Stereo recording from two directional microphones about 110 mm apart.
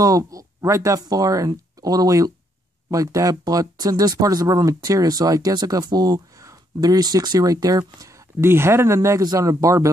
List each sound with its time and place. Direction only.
0.0 s speech: 30° right (ahead or behind)